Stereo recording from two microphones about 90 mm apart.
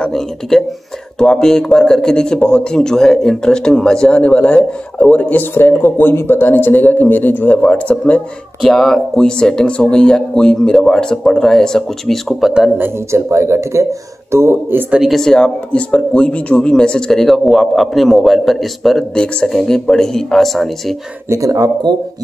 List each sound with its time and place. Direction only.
0.0 s speech: 5° left (ahead or behind)
12.7 s speech: 25° right (ahead or behind)
14.9 s speech: 5° right (ahead or behind)
15.1 s speech: 5° left (ahead or behind)
21.3 s speech: 40° right (ahead or behind)
21.9 s speech: 50° right (ahead or behind)